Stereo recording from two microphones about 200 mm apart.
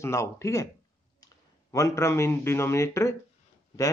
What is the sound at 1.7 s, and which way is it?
A man's voice, 15° left (ahead or behind).